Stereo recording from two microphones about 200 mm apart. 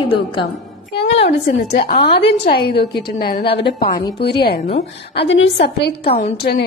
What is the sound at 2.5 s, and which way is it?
Speech, 55° left (ahead or behind).